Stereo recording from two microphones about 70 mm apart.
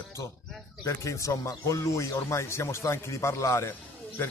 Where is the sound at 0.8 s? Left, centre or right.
Left.